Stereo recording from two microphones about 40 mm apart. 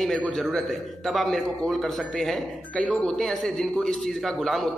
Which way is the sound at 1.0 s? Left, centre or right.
Centre.